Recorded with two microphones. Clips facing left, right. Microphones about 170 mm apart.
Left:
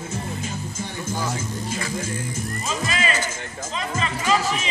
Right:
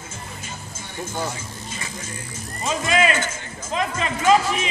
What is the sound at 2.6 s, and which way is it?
Music, 60° right (ahead or behind).